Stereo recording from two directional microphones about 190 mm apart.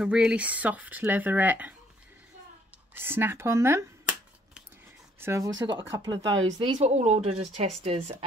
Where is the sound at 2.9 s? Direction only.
10° right (ahead or behind).